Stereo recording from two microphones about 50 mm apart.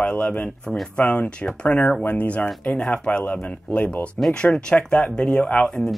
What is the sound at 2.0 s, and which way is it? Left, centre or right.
Speech, left.